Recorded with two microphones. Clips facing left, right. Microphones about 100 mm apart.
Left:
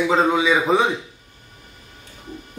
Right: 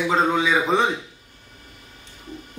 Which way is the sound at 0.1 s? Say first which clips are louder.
Left 1 dB; 5° left (ahead or behind).